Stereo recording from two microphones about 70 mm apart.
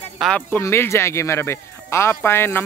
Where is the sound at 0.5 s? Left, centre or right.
Left.